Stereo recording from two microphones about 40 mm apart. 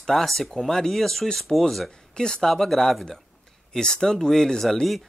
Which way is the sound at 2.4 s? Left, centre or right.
Centre.